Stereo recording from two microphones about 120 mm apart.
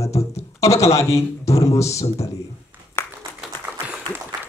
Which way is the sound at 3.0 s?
20° left (ahead or behind).